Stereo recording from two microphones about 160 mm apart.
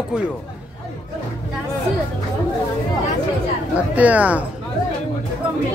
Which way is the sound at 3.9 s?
10° right (ahead or behind).